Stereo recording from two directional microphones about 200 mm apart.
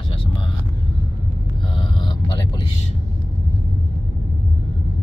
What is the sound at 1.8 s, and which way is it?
Speech, 25° left (ahead or behind).